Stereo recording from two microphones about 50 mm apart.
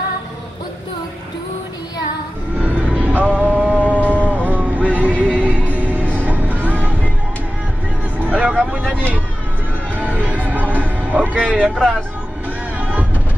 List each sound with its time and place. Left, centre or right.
2.6 s music: right
8.2 s vehicle: right
9.9 s music: right
11.6 s speech: centre
12.7 s vehicle: right